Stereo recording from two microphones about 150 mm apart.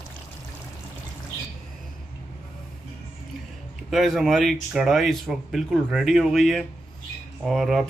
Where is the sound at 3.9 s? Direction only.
Centre (ahead or behind).